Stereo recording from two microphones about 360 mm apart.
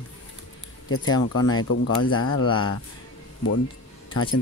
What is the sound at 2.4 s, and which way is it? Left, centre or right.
Speech, centre.